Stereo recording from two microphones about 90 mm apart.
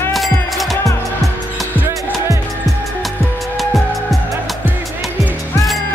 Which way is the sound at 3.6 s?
Centre (ahead or behind).